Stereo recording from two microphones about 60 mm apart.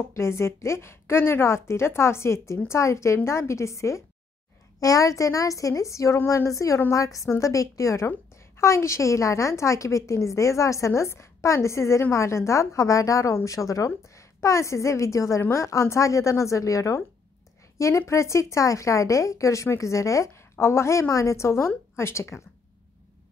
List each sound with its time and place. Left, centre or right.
0.1 s speech: left
4.7 s a woman's voice: left
20.5 s speech: left